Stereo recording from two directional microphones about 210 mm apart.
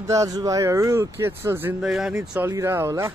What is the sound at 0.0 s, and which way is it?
Speech, 15° right (ahead or behind).